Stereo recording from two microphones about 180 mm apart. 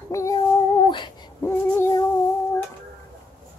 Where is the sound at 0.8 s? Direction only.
25° left (ahead or behind).